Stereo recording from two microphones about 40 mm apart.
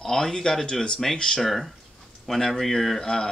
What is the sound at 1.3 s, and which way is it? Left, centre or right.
Speech, centre.